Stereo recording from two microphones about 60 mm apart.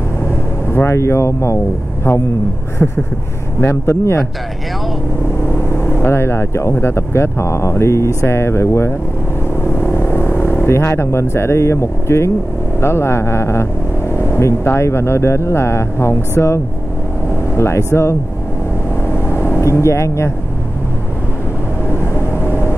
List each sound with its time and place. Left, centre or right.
0.7 s speech: left
2.8 s a sound: centre
3.6 s speech: left
5.5 s vehicle: left
6.8 s speech: left
9.7 s vehicle: left
12.8 s speech: left
19.1 s vehicle: left
22.1 s vehicle: left